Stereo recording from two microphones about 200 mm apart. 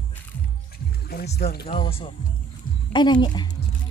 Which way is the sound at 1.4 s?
50° left (ahead or behind).